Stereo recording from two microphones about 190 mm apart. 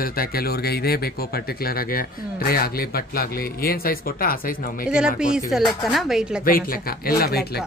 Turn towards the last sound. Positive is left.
turn(degrees=55)  # may be behind; listen again after turning